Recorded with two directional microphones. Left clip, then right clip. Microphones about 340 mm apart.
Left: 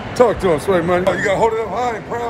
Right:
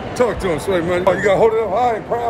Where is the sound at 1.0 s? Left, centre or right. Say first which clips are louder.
Right 2 dB; centre.